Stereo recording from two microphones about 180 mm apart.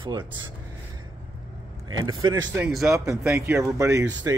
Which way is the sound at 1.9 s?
20° right (ahead or behind).